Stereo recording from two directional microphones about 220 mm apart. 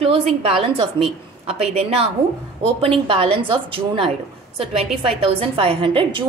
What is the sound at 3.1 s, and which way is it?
A woman's voice, 25° right (ahead or behind).